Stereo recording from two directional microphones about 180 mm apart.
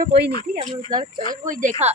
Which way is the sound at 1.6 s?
40° right (ahead or behind).